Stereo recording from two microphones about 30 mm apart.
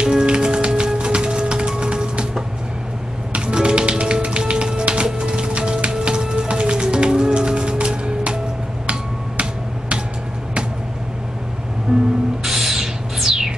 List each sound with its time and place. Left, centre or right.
0.0 s music: right
3.3 s music: right
11.9 s music: right
12.4 s a sound: centre